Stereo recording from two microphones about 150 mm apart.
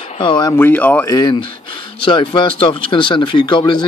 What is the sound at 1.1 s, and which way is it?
Speech, 30° left (ahead or behind).